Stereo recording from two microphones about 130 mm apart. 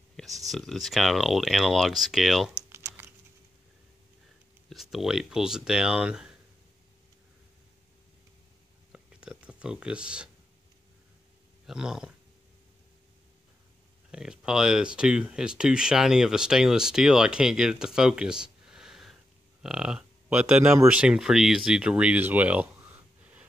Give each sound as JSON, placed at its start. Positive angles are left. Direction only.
{"t": 0.5, "sound": "speech", "side_deg": 0}
{"t": 2.7, "sound": "typing", "side_deg": -20}
{"t": 4.6, "sound": "speech", "side_deg": 0}
{"t": 8.9, "sound": "a sound", "side_deg": -10}
{"t": 11.6, "sound": "speech", "side_deg": -5}
{"t": 14.1, "sound": "speech", "side_deg": -5}
{"t": 21.0, "sound": "speech", "side_deg": -5}